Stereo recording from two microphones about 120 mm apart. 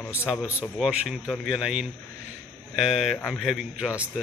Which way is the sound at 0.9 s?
10° right (ahead or behind).